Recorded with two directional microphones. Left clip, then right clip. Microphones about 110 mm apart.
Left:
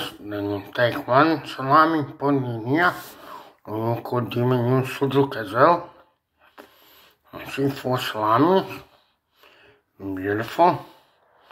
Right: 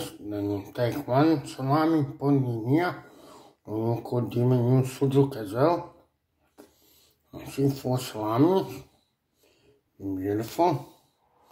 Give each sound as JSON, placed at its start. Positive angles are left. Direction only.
{"t": 0.0, "sound": "speech", "side_deg": -15}
{"t": 3.4, "sound": "a sound", "side_deg": 30}
{"t": 4.1, "sound": "speech", "side_deg": -15}
{"t": 7.3, "sound": "speech", "side_deg": -15}
{"t": 10.1, "sound": "speech", "side_deg": -15}